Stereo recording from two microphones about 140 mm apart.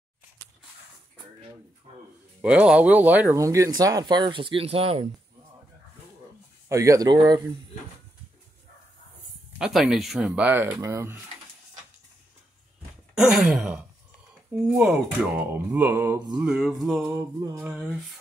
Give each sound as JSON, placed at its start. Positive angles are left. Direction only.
{"t": 2.4, "sound": "speech", "side_deg": -10}
{"t": 3.3, "sound": "speech", "side_deg": -20}
{"t": 6.7, "sound": "speech", "side_deg": -25}
{"t": 9.6, "sound": "speech", "side_deg": -5}
{"t": 13.1, "sound": "a sound", "side_deg": -5}
{"t": 14.8, "sound": "speech", "side_deg": -5}
{"t": 16.3, "sound": "speech", "side_deg": -5}